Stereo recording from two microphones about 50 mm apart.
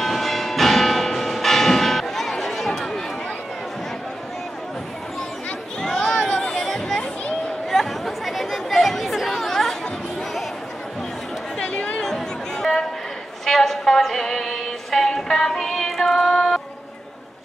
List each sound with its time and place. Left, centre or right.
0.0 s church bell: centre
5.8 s chatter: centre
11.6 s chatter: left
12.0 s chatter: centre
13.5 s music: centre